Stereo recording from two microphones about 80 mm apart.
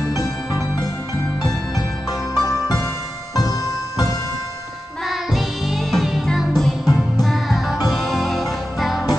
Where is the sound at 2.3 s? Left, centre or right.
Left.